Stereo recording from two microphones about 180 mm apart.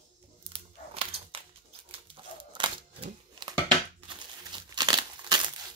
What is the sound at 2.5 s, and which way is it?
Crumpling, 25° right (ahead or behind).